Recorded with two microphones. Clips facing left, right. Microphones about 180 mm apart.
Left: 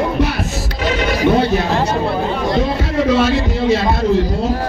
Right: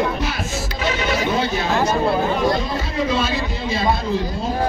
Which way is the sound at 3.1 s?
75° left (ahead or behind).